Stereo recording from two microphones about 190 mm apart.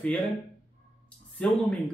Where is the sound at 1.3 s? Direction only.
5° left (ahead or behind).